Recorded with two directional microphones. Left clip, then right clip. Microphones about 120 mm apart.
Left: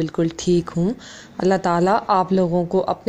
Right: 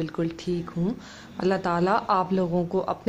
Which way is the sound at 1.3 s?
30° left (ahead or behind).